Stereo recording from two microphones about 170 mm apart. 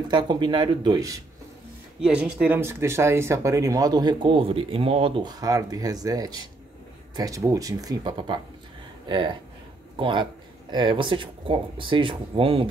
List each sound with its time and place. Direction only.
0.1 s speech: 25° right (ahead or behind)
2.0 s speech: 5° right (ahead or behind); by 12.6 s 30° right (ahead or behind)